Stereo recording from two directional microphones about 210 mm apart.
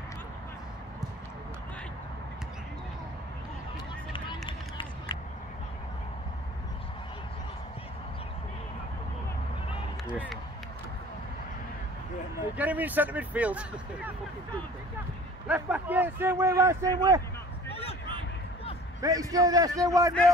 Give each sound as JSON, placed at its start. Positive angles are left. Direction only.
{"t": 4.1, "sound": "run", "side_deg": 25}
{"t": 12.5, "sound": "speech", "side_deg": -10}
{"t": 15.4, "sound": "speech", "side_deg": -5}
{"t": 18.9, "sound": "speech", "side_deg": -15}